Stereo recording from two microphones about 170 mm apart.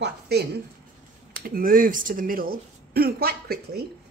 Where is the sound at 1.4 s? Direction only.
55° right (ahead or behind).